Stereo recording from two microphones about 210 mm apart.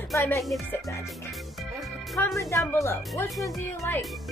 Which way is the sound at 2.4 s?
15° left (ahead or behind).